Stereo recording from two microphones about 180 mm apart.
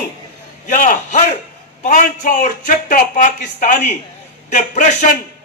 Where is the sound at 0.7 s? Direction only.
45° left (ahead or behind).